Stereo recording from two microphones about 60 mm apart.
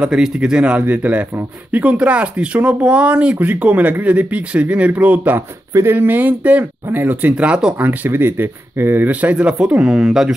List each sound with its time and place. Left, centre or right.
0.0 s speech: centre
7.8 s speech: right; by 10.3 s centre